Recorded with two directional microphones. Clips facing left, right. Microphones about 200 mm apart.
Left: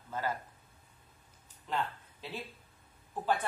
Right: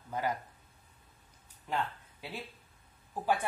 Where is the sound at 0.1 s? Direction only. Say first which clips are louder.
Right 2 dB; 15° right (ahead or behind).